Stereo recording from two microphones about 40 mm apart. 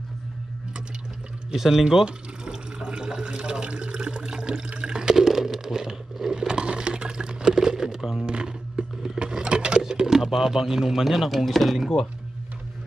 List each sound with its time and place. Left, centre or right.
1.5 s speech: centre
2.0 s water: right
6.2 s crumpling: centre
8.3 s a sound: right
9.2 s speech: right; by 11.9 s centre